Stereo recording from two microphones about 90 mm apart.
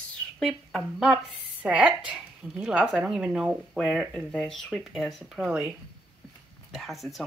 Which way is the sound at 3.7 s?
5° left (ahead or behind).